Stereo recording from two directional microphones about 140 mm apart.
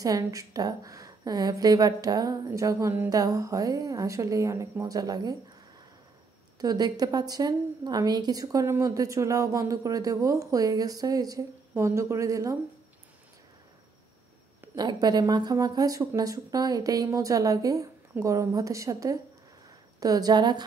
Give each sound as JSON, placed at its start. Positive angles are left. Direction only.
{"t": 0.0, "sound": "a woman's voice", "side_deg": -25}
{"t": 6.6, "sound": "a woman's voice", "side_deg": -25}
{"t": 14.8, "sound": "a woman's voice", "side_deg": -30}